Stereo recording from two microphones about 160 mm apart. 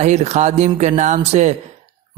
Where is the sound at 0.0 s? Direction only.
45° right (ahead or behind).